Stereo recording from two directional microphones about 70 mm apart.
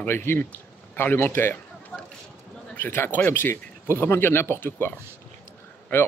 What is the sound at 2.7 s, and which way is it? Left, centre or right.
Speech, left.